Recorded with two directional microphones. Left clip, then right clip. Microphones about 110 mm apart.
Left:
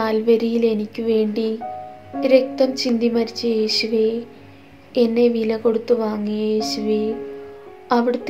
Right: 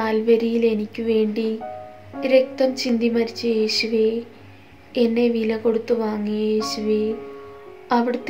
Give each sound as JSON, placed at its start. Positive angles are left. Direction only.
{"t": 0.0, "sound": "speech", "side_deg": 20}